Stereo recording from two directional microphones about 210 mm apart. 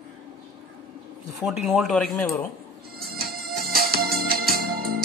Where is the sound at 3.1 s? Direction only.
45° right (ahead or behind).